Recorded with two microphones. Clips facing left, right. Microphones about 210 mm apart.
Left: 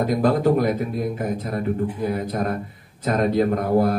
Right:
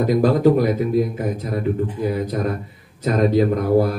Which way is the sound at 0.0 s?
50° left (ahead or behind).